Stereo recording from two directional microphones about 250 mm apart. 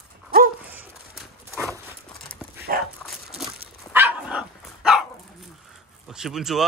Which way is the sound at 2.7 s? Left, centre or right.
Right.